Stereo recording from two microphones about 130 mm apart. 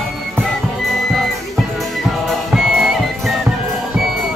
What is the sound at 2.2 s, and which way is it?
Music, centre (ahead or behind).